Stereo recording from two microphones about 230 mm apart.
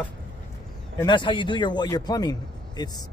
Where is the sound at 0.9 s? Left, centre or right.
Centre.